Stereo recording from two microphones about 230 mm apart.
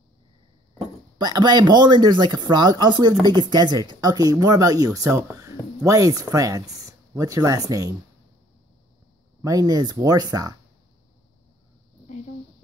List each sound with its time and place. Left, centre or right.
1.1 s speech: centre
9.4 s speech: centre